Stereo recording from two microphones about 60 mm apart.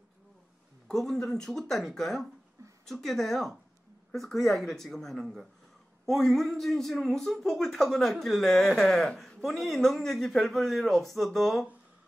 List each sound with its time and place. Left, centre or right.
0.8 s a man's voice: centre